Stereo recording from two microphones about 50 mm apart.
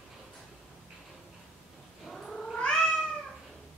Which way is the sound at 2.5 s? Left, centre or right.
Centre.